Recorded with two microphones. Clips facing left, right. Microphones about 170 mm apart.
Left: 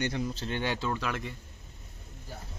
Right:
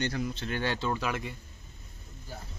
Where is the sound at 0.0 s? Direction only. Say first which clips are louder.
Even; 25° left (ahead or behind).